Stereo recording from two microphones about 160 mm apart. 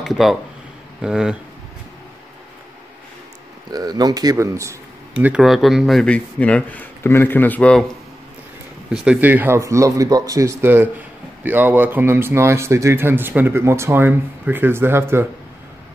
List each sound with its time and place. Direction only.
0.0 s speech: centre (ahead or behind)
3.7 s speech: 25° right (ahead or behind)
5.1 s speech: 5° right (ahead or behind); by 7.8 s 10° left (ahead or behind)
8.9 s speech: 5° right (ahead or behind)